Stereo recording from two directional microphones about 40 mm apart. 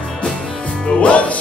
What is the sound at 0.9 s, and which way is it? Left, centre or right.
Music, left.